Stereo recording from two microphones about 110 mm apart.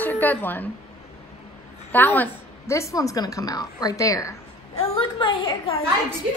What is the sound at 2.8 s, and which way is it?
A woman's voice, 30° left (ahead or behind).